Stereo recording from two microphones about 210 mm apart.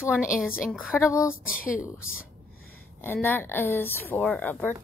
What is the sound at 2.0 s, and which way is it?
Speech, 75° left (ahead or behind).